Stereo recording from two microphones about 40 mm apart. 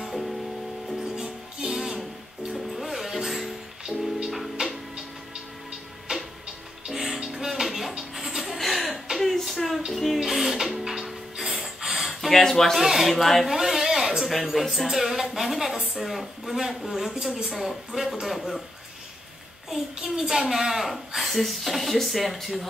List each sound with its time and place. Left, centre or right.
0.0 s music: centre
1.1 s music: centre
8.4 s chuckle: centre
9.2 s a sound: centre
9.9 s music: centre
10.2 s music: centre
12.2 s speech: centre
12.7 s a woman's voice: centre
13.5 s a sound: centre
14.2 s a woman's voice: centre
19.7 s a woman's voice: centre